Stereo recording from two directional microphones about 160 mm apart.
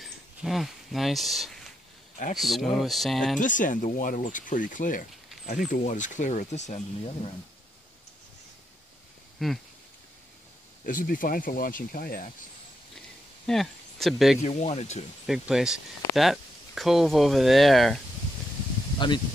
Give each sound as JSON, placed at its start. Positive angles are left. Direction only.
{"t": 0.0, "sound": "speech", "side_deg": 0}
{"t": 3.3, "sound": "speech", "side_deg": 55}
{"t": 9.4, "sound": "speech", "side_deg": 0}
{"t": 10.9, "sound": "speech", "side_deg": 60}
{"t": 13.5, "sound": "speech", "side_deg": 0}
{"t": 14.4, "sound": "speech", "side_deg": 45}
{"t": 15.2, "sound": "speech", "side_deg": -5}
{"t": 18.9, "sound": "speech", "side_deg": 30}